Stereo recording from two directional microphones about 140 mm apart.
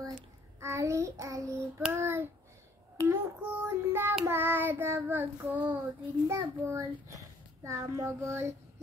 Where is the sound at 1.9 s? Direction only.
15° right (ahead or behind).